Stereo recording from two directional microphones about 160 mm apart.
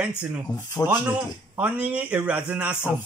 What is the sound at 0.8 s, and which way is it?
Speech, 15° left (ahead or behind).